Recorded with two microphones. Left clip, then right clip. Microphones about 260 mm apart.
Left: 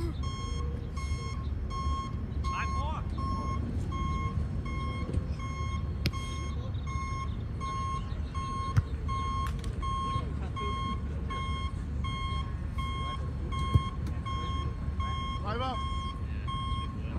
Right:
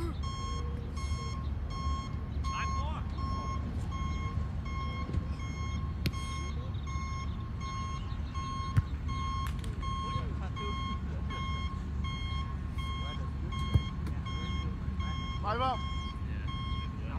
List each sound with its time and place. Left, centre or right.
2.5 s vehicle: centre
9.9 s reversing beeps: centre
13.6 s reversing beeps: centre
15.4 s vehicle: right